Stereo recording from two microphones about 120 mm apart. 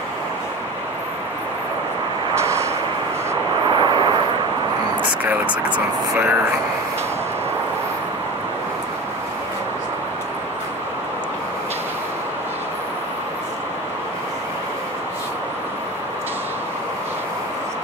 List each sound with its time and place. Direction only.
2.3 s vehicle: 25° right (ahead or behind)
3.7 s vehicle: 40° right (ahead or behind)
5.2 s speech: 15° right (ahead or behind)